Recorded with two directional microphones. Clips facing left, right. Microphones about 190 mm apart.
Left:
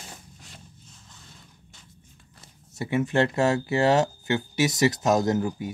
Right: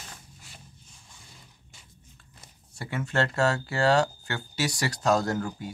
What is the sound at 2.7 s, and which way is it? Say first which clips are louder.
Speech: left 5 dB; 20° left (ahead or behind).